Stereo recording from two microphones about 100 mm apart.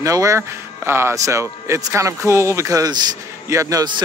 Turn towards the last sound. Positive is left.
turn(degrees=-35)  # may be behind; listen again after turning